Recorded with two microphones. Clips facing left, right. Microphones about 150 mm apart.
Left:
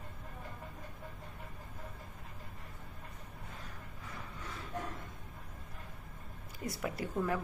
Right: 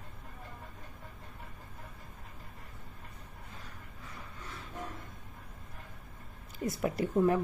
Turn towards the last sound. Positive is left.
turn(degrees=-25)  # may be behind; listen again after turning